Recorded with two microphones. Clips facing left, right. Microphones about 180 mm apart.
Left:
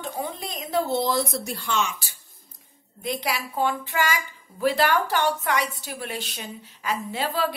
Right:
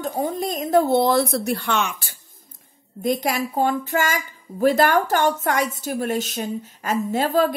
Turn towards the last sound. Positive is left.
turn(degrees=-45)  # may be behind; listen again after turning